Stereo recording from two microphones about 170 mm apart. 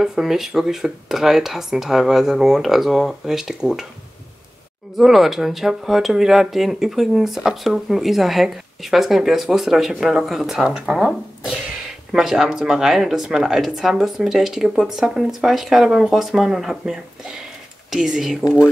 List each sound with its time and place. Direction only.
0.0 s speech: centre (ahead or behind)
4.9 s speech: centre (ahead or behind)
18.4 s speech: 15° left (ahead or behind)